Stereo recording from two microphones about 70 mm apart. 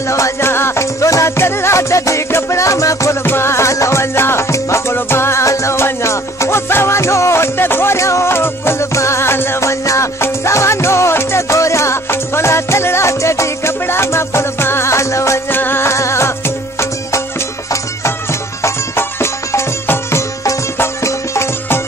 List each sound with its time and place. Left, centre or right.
0.1 s music: left
3.3 s music: left
15.5 s music: left
18.6 s music: left